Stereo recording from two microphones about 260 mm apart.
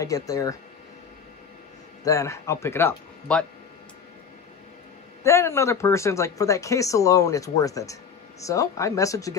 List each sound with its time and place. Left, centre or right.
0.0 s speech: centre
2.0 s speech: centre
5.2 s speech: centre